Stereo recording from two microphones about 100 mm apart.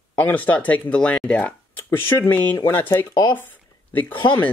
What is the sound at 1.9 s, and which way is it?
Speech, 25° left (ahead or behind).